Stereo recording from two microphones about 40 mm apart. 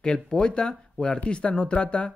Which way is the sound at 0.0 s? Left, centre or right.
Left.